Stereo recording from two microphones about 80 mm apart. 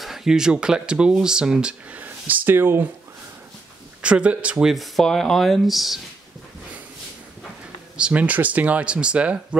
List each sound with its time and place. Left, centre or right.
0.0 s speech: centre
2.0 s speech: right
4.0 s speech: centre
8.0 s speech: centre